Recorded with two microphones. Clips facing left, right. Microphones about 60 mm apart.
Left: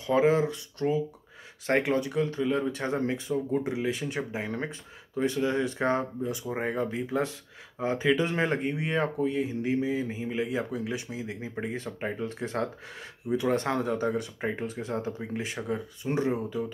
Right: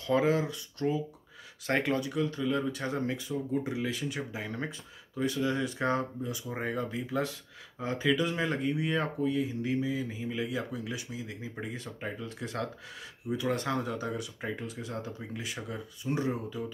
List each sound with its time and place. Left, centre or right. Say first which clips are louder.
0.0 s speech: left 4 dB; left